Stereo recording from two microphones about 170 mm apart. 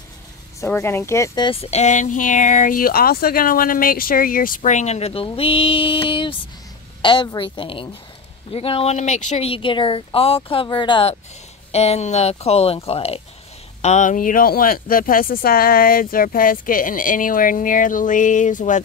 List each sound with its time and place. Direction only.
0.7 s a woman's voice: 15° left (ahead or behind); by 18.8 s 50° left (ahead or behind)